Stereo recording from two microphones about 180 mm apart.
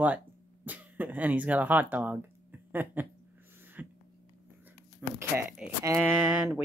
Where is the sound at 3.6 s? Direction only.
10° right (ahead or behind).